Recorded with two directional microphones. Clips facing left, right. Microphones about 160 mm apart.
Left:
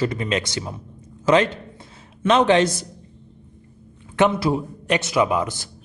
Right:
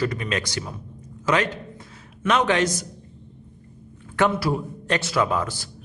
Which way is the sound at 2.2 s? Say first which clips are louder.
Left 4 dB; 30° left (ahead or behind).